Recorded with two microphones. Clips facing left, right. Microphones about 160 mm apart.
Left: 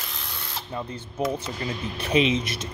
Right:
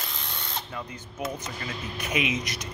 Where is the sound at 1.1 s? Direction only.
30° left (ahead or behind).